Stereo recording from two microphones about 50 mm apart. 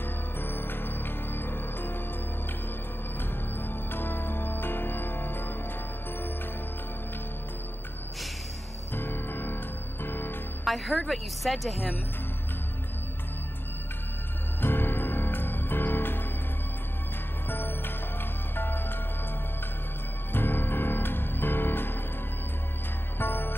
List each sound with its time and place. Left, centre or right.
0.4 s music: left
3.2 s music: left
8.9 s music: left
10.6 s a woman's voice: centre
14.6 s music: left
17.5 s music: left
20.3 s music: left
23.1 s music: left